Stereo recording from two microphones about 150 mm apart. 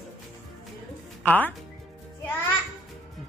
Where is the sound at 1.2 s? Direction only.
10° left (ahead or behind).